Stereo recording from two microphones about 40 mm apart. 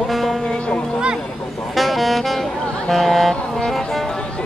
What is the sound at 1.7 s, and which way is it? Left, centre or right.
Saxophone, centre.